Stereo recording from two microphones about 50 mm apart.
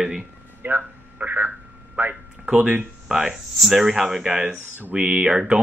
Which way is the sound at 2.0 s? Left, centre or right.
Right.